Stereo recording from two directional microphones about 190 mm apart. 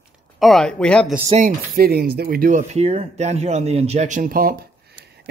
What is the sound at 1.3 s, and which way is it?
Speech, 40° right (ahead or behind).